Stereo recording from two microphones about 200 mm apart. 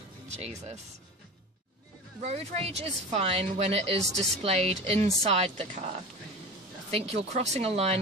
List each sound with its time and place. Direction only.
0.3 s a woman's voice: 35° right (ahead or behind)
2.2 s a woman's voice: 30° right (ahead or behind)